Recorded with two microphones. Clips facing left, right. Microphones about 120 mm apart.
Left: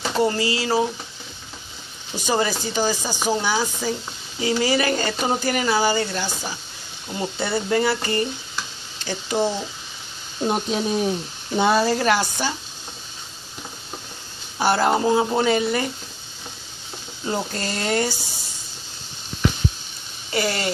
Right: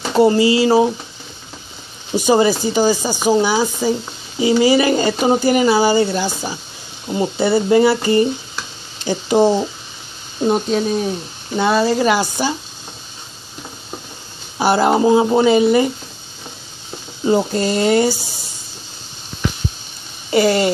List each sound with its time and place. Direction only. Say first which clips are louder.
0.2 s speech: right 10 dB; 15° right (ahead or behind)
2.1 s speech: right 9 dB; 15° right (ahead or behind)
10.5 s speech: right 5 dB; 10° left (ahead or behind)
11.9 s speech: right 4 dB; 5° right (ahead or behind)
14.6 s speech: right 5 dB; 10° right (ahead or behind)
17.2 s speech: right 10 dB; 15° right (ahead or behind)
20.2 s speech: right 10 dB; 20° right (ahead or behind)